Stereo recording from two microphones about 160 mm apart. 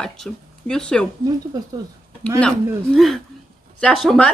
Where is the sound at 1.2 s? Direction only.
25° right (ahead or behind).